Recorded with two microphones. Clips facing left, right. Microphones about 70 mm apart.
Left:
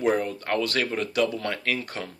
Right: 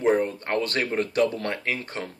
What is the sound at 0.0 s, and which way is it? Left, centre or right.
Speech, right.